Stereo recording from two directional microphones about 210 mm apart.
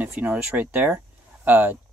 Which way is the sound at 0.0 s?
10° right (ahead or behind).